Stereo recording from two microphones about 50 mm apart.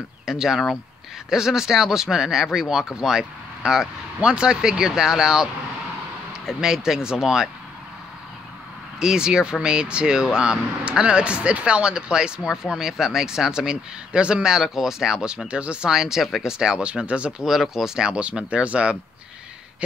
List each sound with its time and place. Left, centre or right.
0.2 s speech: centre
9.0 s speech: centre
15.9 s speech: centre
17.5 s speech: centre; by 18.9 s right